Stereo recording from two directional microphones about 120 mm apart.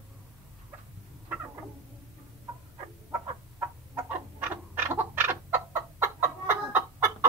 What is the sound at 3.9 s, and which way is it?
Chicken, 15° right (ahead or behind).